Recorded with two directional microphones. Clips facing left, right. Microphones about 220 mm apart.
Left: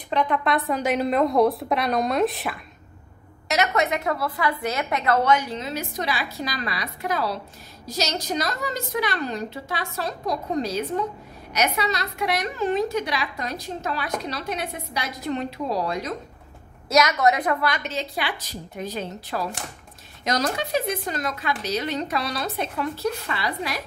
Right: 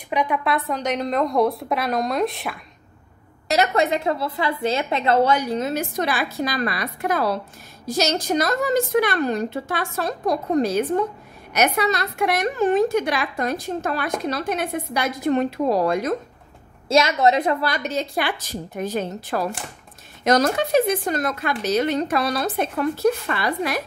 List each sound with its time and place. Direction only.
0.1 s a woman's voice: 10° right (ahead or behind)
3.4 s a woman's voice: 30° right (ahead or behind); by 16.2 s 50° right (ahead or behind)
16.9 s speech: 25° right (ahead or behind); by 23.8 s 50° right (ahead or behind)